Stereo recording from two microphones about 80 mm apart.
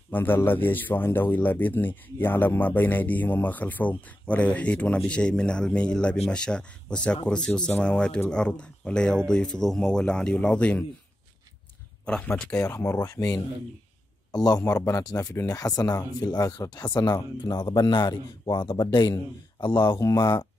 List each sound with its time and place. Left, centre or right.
0.1 s a man's voice: left
12.0 s speech: centre
12.6 s speech: left
14.3 s a man's voice: left
14.8 s speech: left
20.0 s speech: left